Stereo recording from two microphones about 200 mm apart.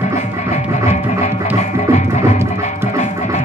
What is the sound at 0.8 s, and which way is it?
Music, 35° left (ahead or behind).